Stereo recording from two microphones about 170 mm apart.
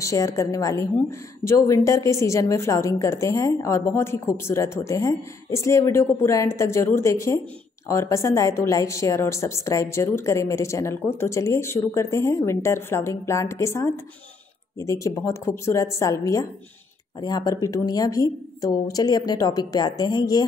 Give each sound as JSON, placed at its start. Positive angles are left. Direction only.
{"t": 0.0, "sound": "a woman's voice", "side_deg": 20}